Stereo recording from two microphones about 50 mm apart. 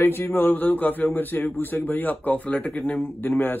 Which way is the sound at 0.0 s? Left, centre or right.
Left.